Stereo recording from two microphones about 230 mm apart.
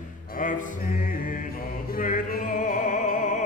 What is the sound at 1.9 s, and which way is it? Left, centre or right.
Music, left.